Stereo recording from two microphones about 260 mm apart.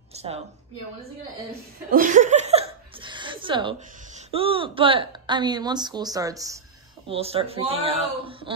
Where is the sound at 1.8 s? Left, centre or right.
Right.